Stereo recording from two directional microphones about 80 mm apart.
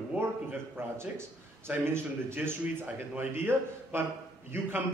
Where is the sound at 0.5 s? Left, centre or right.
Right.